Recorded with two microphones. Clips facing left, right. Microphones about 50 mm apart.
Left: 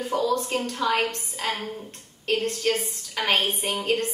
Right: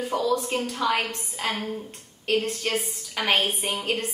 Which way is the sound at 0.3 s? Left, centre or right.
Centre.